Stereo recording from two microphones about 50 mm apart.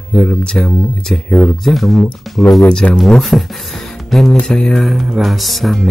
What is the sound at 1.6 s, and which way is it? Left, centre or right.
Music, centre.